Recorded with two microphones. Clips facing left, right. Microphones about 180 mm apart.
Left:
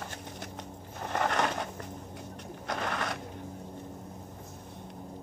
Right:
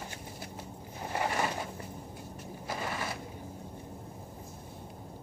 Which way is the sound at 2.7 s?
70° left (ahead or behind).